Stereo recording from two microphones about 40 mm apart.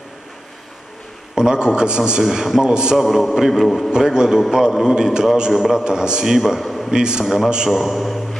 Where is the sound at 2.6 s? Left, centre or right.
Right.